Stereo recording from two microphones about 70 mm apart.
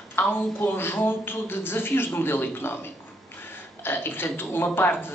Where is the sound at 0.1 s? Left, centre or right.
Left.